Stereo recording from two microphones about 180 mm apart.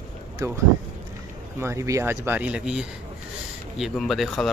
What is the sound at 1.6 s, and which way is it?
Speech, 15° right (ahead or behind).